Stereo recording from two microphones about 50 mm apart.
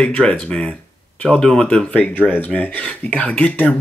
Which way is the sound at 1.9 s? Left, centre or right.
Left.